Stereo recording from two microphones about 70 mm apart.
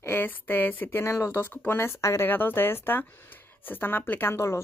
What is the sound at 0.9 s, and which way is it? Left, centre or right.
Speech, left.